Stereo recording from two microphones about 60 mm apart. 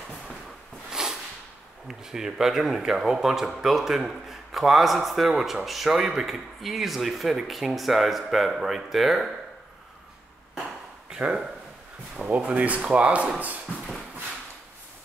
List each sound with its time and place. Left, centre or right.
0.8 s a sound: centre
1.9 s speech: centre
11.1 s speech: centre